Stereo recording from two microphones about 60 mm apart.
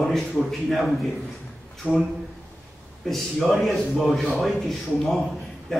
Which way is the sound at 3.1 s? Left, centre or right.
Centre.